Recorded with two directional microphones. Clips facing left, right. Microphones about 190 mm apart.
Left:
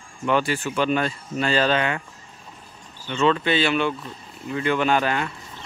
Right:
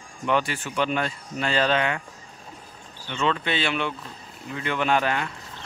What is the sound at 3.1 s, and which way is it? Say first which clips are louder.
Speech: left 5 dB; 35° left (ahead or behind).